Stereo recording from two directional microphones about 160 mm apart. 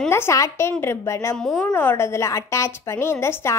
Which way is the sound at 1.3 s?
5° left (ahead or behind).